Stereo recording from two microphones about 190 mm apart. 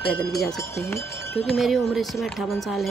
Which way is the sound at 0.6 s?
15° left (ahead or behind).